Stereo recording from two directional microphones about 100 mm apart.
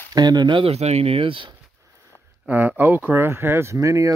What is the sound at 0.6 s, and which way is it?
Speech, 90° right.